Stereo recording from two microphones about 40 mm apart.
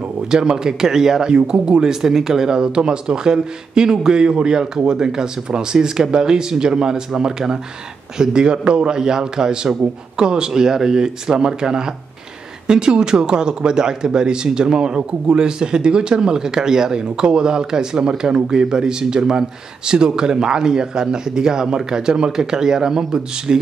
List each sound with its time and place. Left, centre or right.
0.3 s speech: centre